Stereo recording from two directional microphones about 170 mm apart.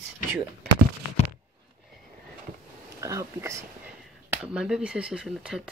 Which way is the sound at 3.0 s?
20° right (ahead or behind).